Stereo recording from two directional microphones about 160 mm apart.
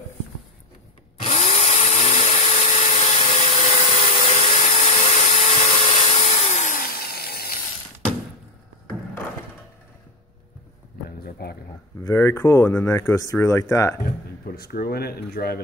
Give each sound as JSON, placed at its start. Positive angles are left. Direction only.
{"t": 1.2, "sound": "drill", "side_deg": 40}
{"t": 11.1, "sound": "a sound", "side_deg": 65}
{"t": 12.1, "sound": "speech", "side_deg": 20}
{"t": 14.0, "sound": "speech", "side_deg": 70}